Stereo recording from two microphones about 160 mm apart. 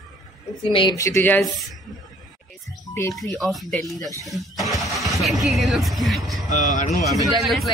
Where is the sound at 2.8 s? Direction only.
20° left (ahead or behind).